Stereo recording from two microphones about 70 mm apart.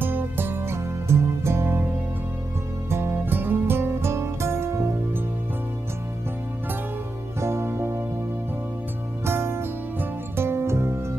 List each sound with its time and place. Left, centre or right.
0.0 s music: right
2.9 s music: right
7.3 s music: right
9.2 s music: right